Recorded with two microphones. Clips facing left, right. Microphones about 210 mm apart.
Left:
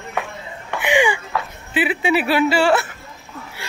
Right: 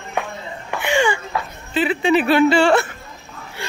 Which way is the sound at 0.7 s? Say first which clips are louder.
Left 1 dB; 15° left (ahead or behind).